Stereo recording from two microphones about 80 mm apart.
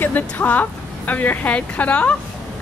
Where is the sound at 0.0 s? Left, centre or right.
Left.